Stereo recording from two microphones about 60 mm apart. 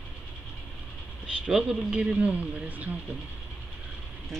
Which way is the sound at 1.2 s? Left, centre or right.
Centre.